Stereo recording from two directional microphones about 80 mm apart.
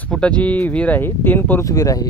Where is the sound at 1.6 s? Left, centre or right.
Left.